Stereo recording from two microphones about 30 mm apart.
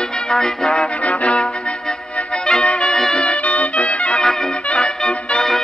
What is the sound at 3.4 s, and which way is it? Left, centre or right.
Music, left.